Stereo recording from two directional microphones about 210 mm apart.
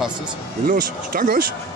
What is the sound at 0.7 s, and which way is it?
Speech, 40° right (ahead or behind).